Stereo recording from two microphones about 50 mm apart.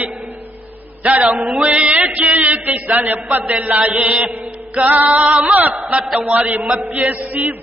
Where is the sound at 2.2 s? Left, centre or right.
Right.